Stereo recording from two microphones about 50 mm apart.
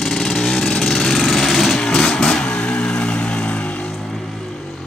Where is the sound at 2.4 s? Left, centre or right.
Left.